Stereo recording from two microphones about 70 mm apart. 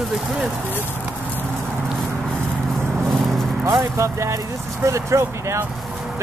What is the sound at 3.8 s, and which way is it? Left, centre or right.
Speech, right.